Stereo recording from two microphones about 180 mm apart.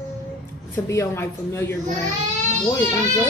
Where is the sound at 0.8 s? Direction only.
15° left (ahead or behind).